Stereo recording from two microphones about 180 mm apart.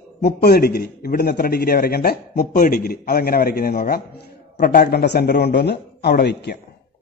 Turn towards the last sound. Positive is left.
turn(degrees=65)  # may be behind; listen again after turning